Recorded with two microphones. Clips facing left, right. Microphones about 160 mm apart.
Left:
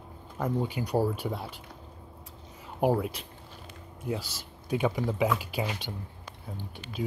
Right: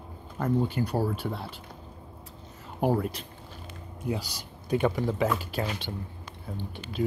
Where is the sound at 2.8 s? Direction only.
10° left (ahead or behind).